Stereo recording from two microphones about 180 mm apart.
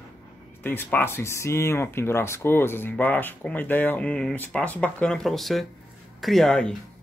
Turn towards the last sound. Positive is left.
turn(degrees=5)  # may be behind; listen again after turning